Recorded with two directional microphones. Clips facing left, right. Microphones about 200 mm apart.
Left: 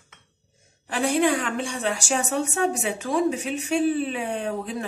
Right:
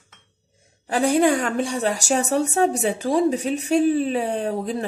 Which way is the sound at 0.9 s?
40° right (ahead or behind).